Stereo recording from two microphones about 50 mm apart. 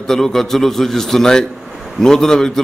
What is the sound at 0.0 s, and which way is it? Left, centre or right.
A man's voice, centre.